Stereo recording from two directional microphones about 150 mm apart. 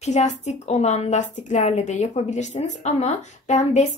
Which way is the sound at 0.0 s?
50° left (ahead or behind).